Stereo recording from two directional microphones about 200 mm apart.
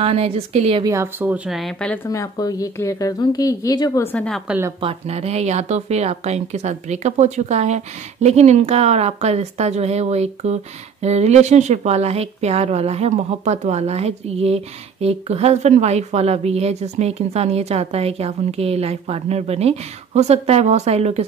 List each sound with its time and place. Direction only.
0.0 s a woman's voice: 30° right (ahead or behind)
0.9 s speech: 10° right (ahead or behind)
2.0 s a woman's voice: 20° left (ahead or behind)
4.5 s speech: 10° right (ahead or behind)
4.7 s speech: 30° right (ahead or behind)